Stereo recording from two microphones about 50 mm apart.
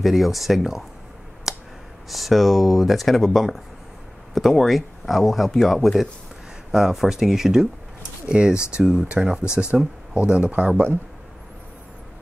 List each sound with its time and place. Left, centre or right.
0.0 s speech: centre
1.5 s a sound: centre
2.0 s speech: centre; by 10.9 s right